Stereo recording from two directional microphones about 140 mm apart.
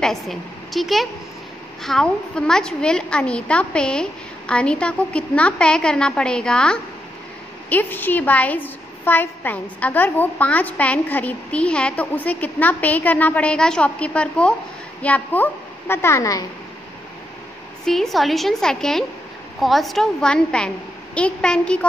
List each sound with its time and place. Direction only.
0.0 s a woman's voice: centre (ahead or behind); by 16.4 s 25° left (ahead or behind)
17.8 s a woman's voice: centre (ahead or behind)